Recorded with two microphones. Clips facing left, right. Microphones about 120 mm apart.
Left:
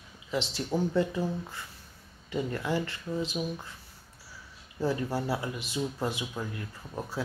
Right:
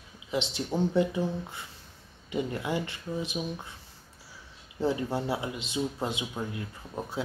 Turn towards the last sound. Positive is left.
turn(degrees=-20)  # may be behind; listen again after turning